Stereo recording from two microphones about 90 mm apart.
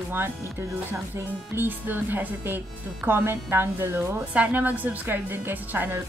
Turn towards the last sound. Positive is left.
turn(degrees=-25)  # may be behind; listen again after turning